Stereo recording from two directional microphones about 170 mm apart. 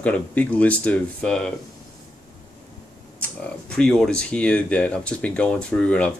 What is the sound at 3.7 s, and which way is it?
Speech, 5° left (ahead or behind).